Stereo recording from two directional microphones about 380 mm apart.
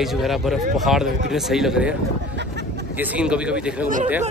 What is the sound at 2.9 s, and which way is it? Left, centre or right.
Speech, centre.